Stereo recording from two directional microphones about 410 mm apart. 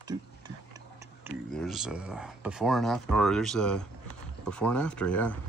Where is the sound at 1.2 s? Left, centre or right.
Centre.